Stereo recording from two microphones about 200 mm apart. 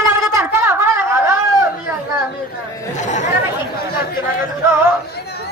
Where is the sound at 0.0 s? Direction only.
15° right (ahead or behind).